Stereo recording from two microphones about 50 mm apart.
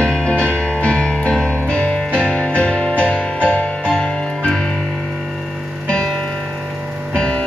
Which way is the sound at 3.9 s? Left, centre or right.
Centre.